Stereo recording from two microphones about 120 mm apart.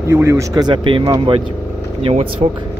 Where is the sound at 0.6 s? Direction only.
45° right (ahead or behind).